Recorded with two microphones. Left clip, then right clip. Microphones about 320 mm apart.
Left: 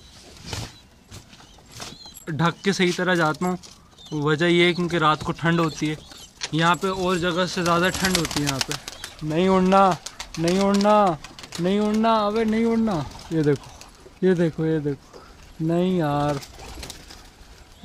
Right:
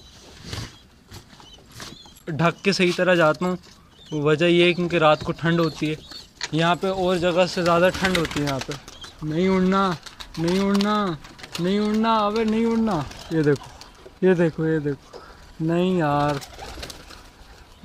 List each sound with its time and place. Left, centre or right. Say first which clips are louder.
2.2 s speech: right 2 dB; centre
8.6 s pigeon: left 3 dB; left
9.4 s speech: left 4 dB; centre